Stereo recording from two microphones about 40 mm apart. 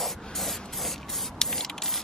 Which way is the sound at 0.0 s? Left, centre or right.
Centre.